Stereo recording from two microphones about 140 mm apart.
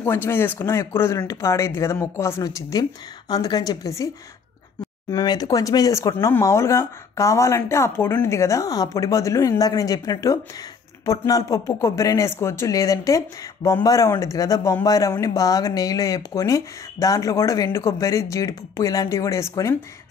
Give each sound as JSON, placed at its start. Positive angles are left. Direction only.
{"t": 0.0, "sound": "speech", "side_deg": 15}
{"t": 5.1, "sound": "speech", "side_deg": 30}